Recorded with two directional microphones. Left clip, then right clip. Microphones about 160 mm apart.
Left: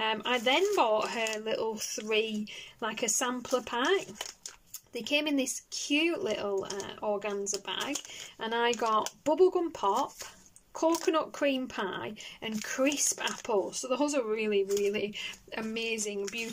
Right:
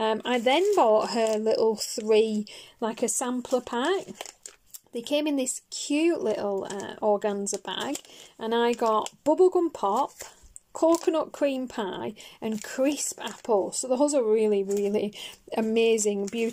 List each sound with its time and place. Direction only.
0.0 s speech: 30° right (ahead or behind)